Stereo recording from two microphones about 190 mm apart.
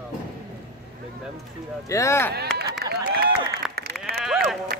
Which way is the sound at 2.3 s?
55° right (ahead or behind).